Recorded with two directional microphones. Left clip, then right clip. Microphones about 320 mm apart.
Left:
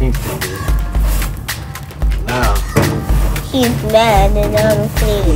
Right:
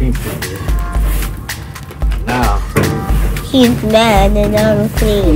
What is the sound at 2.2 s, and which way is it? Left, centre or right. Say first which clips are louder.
Music: right 1 dB; centre.